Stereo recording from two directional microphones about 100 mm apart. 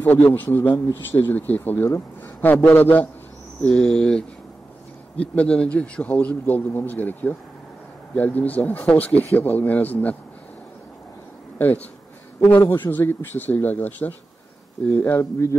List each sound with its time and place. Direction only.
0.0 s a man's voice: 20° left (ahead or behind)
11.5 s a man's voice: 15° left (ahead or behind)